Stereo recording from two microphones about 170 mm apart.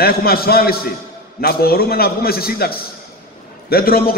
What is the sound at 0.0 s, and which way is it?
A man's voice, 65° left (ahead or behind).